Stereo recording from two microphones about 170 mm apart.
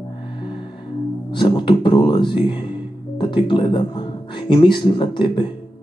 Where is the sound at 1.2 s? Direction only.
30° left (ahead or behind).